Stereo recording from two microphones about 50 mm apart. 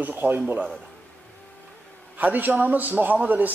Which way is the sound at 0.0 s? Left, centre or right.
Right.